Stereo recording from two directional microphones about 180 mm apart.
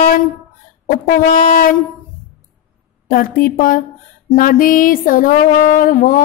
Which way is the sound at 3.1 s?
50° left (ahead or behind).